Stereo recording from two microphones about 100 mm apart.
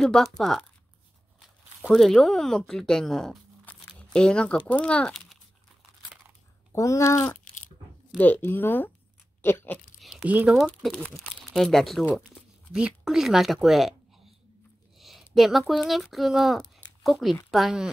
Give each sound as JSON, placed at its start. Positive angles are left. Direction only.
{"t": 0.0, "sound": "speech", "side_deg": 5}
{"t": 2.0, "sound": "speech", "side_deg": 5}
{"t": 6.7, "sound": "speech", "side_deg": 30}
{"t": 8.2, "sound": "speech", "side_deg": 20}
{"t": 9.9, "sound": "a sound", "side_deg": 0}
{"t": 10.2, "sound": "speech", "side_deg": -15}
{"t": 10.5, "sound": "speech", "side_deg": 0}
{"t": 10.9, "sound": "speech", "side_deg": 10}
{"t": 11.1, "sound": "speech", "side_deg": 0}
{"t": 12.7, "sound": "speech", "side_deg": -10}
{"t": 15.0, "sound": "a sound", "side_deg": 0}
{"t": 15.3, "sound": "speech", "side_deg": 0}